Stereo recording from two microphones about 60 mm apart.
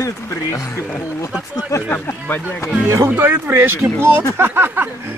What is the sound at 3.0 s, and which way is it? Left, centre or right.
Speech, right.